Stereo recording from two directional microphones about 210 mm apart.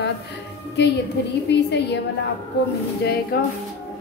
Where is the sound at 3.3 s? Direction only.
45° left (ahead or behind).